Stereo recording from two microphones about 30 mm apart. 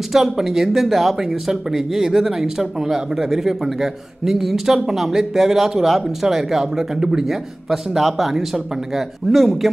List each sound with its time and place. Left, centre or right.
0.1 s a man's voice: centre
2.0 s a man's voice: centre
7.2 s a man's voice: centre